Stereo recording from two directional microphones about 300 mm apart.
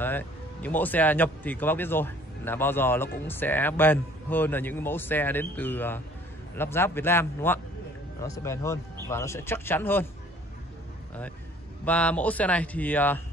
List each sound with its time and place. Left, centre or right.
0.0 s a man's voice: centre
11.8 s a man's voice: centre